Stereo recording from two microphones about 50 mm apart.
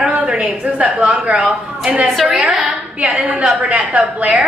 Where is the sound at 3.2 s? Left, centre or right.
Right.